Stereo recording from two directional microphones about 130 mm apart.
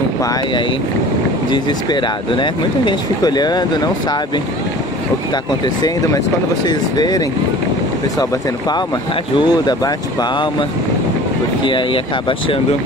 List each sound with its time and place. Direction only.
1.5 s speech: 35° left (ahead or behind)
5.8 s speech: 30° left (ahead or behind)
11.6 s speech: 40° left (ahead or behind)